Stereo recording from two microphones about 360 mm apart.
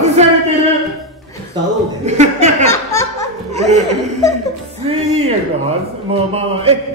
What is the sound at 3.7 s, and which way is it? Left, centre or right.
Speech, centre.